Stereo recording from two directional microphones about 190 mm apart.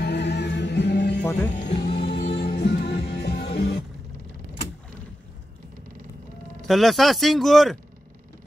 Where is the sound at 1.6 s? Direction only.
65° left (ahead or behind).